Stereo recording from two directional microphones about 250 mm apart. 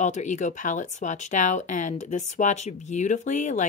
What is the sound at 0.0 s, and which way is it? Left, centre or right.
Speech, left.